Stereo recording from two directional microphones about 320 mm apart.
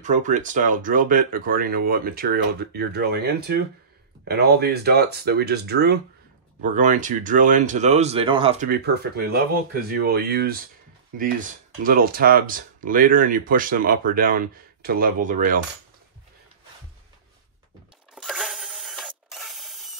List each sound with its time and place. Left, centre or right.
0.0 s speech: right
18.1 s mechanisms: centre